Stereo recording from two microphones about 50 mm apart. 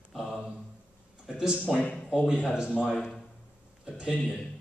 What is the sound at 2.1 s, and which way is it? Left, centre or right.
Speech, centre.